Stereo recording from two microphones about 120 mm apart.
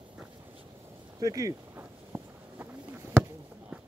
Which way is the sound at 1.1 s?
30° right (ahead or behind).